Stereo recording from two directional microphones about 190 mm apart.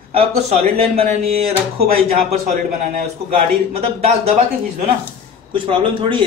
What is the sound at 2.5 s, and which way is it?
Speech, 45° right (ahead or behind).